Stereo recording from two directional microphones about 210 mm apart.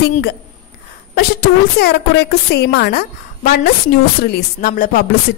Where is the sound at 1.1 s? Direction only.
50° left (ahead or behind).